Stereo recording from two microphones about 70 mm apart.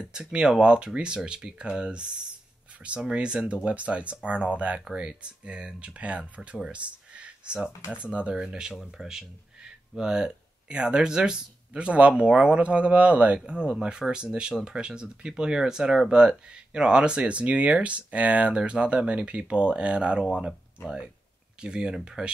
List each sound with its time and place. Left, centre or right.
0.1 s speech: centre
7.1 s a sound: centre
7.9 s speech: centre
21.5 s speech: centre